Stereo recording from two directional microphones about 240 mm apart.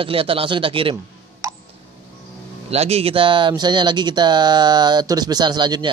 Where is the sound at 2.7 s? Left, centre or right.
Right.